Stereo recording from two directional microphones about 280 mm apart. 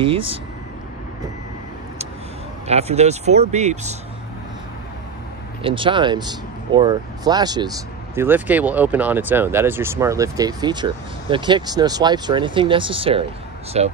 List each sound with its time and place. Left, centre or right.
0.0 s speech: centre
2.6 s speech: right
5.6 s speech: centre